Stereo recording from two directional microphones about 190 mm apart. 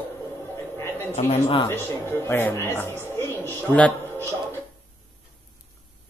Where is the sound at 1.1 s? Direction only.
30° left (ahead or behind).